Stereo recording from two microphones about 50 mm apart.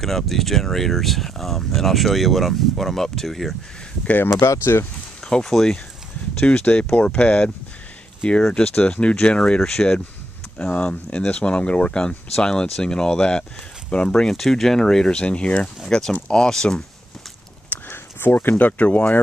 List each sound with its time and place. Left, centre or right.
0.0 s speech: centre
4.3 s speech: left
5.2 s speech: centre
6.7 s speech: left
10.6 s speech: left
14.3 s speech: centre
17.8 s speech: left